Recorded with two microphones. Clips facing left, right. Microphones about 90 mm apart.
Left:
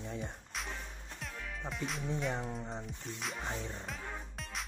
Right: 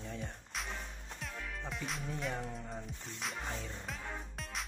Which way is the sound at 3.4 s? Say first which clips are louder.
Left 2 dB; 20° left (ahead or behind).